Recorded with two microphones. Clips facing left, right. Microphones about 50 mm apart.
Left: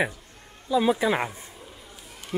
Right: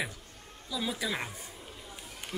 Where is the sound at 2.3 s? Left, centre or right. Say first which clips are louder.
Left 9 dB; left.